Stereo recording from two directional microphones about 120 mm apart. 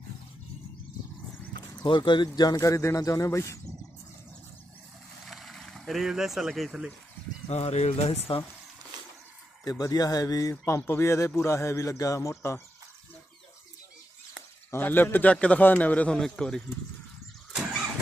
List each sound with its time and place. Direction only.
1.8 s speech: 40° left (ahead or behind); by 3.5 s 25° left (ahead or behind)
5.2 s vehicle: centre (ahead or behind)
7.4 s speech: 65° left (ahead or behind)
9.7 s speech: 30° left (ahead or behind)
10.5 s speech: 20° left (ahead or behind)
14.7 s a man's voice: 15° left (ahead or behind)